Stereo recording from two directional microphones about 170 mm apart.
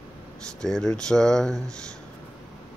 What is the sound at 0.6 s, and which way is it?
Speech, 5° left (ahead or behind).